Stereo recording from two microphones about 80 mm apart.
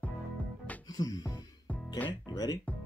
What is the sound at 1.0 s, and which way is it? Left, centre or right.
Music, left.